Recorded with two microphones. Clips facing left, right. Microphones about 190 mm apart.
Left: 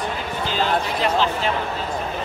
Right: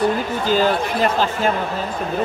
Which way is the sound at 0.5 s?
45° right (ahead or behind).